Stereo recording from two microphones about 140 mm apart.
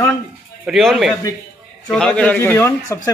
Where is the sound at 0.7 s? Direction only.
Centre (ahead or behind).